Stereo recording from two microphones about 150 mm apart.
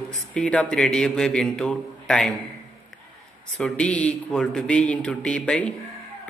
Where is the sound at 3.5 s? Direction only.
5° left (ahead or behind).